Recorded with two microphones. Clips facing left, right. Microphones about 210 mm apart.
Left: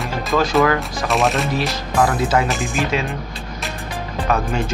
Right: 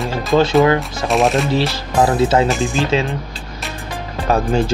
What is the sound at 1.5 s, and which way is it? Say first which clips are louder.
Speech: right 3 dB; 30° right (ahead or behind).